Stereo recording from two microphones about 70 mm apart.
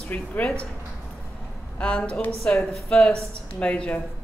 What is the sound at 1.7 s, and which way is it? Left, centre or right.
Speech, centre.